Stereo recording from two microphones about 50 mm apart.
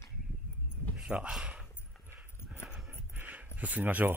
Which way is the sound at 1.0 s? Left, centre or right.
Centre.